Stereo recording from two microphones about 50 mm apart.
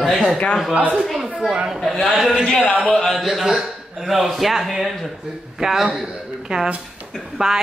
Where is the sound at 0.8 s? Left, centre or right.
Right.